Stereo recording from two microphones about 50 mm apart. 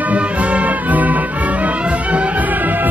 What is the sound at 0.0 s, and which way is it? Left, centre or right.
Music, right.